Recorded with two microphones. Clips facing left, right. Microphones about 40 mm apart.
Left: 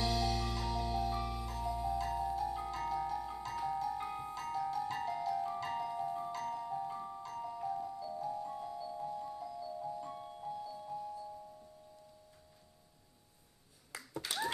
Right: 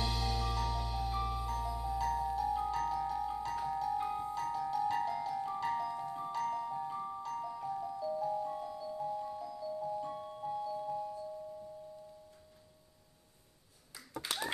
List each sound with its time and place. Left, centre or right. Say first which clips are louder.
0.0 s music: left 1 dB; centre
6.3 s marimba: right 3 dB; centre
7.2 s glockenspiel: right 1 dB; centre
8.0 s music: right 5 dB; centre
14.2 s clapping: left 1 dB; right